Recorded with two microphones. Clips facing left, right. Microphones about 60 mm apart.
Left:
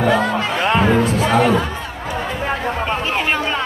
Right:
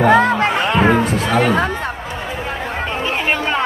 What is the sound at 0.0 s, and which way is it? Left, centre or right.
Music, right.